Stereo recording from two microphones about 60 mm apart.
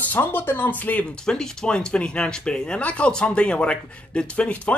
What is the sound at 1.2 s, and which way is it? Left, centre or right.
Speech, centre.